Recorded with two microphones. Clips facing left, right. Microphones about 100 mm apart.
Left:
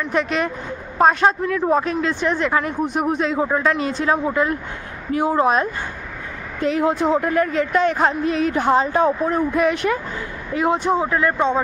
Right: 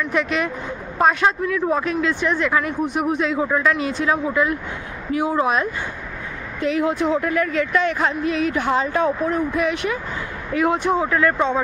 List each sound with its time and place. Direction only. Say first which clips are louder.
0.0 s speech: left 1 dB; 35° left (ahead or behind)
10.5 s speech: even; 25° left (ahead or behind)